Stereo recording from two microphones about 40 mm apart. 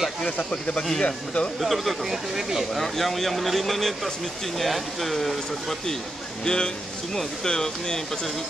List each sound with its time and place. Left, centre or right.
0.5 s speech: left
1.6 s speech: centre
2.8 s speech: centre